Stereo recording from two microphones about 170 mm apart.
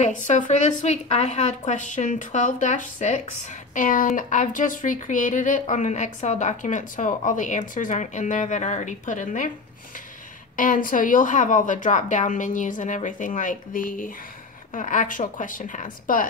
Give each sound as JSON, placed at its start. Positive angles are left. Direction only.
{"t": 0.0, "sound": "a woman's voice", "side_deg": 45}
{"t": 10.5, "sound": "a woman's voice", "side_deg": 50}